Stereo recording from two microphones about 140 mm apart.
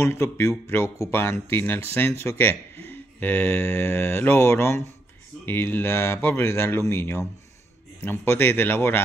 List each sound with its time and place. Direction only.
0.0 s speech: 20° left (ahead or behind)